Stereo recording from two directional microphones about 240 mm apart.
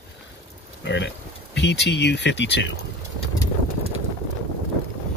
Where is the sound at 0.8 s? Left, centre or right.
Left.